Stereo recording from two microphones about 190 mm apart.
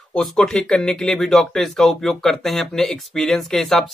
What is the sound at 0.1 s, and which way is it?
Speech, 5° left (ahead or behind).